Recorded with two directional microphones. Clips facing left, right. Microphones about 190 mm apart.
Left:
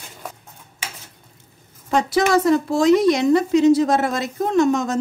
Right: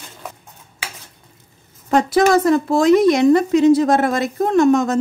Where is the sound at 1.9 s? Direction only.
55° right (ahead or behind).